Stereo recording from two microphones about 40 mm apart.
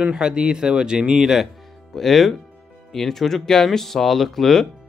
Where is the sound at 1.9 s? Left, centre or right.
Centre.